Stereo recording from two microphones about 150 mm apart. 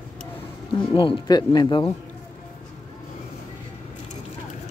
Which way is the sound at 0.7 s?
35° left (ahead or behind).